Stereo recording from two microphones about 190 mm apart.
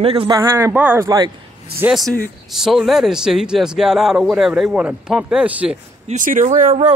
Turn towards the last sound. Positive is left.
turn(degrees=-40)  # may be behind; listen again after turning